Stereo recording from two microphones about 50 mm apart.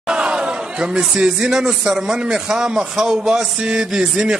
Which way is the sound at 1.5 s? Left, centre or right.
Centre.